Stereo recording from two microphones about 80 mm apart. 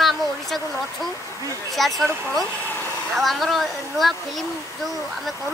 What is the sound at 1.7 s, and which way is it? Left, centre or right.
Speech, centre.